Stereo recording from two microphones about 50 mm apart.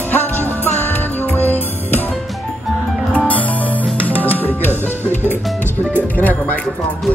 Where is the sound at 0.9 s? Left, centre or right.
Left.